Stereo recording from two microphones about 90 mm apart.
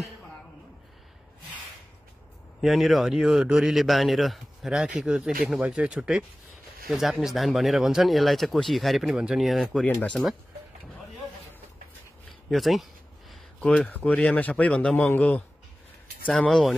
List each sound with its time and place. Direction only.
2.6 s speech: centre (ahead or behind)
12.3 s a sound: centre (ahead or behind)
13.8 s a man's voice: 15° left (ahead or behind)
16.3 s speech: 5° left (ahead or behind)